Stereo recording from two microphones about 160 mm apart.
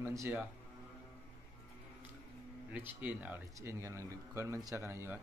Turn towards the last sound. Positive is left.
turn(degrees=-15)  # may be behind; listen again after turning